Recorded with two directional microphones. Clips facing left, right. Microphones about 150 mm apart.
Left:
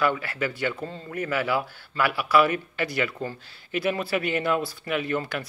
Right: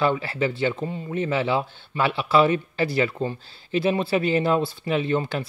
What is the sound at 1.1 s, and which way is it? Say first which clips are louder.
Speech: right 3 dB; 25° right (ahead or behind).